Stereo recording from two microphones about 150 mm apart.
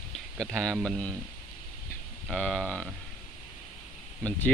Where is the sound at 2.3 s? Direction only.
5° left (ahead or behind).